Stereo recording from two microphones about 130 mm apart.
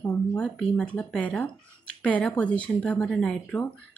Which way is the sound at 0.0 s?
15° left (ahead or behind).